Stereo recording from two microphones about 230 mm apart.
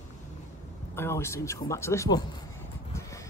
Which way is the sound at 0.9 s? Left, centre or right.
Centre.